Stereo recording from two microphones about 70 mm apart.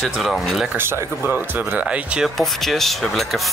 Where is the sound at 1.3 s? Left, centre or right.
Centre.